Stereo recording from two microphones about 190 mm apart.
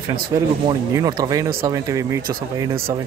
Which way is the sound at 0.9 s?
20° right (ahead or behind).